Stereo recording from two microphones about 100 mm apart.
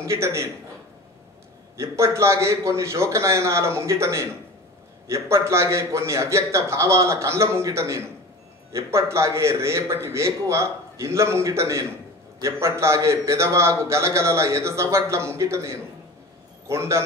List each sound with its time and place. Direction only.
0.0 s a man's voice: 25° right (ahead or behind)
1.8 s a man's voice: 30° right (ahead or behind)